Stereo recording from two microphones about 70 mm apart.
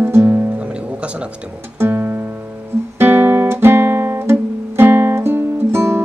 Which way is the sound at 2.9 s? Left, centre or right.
Right.